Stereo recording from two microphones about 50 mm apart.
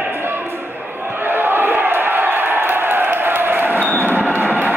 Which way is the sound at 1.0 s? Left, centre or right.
Right.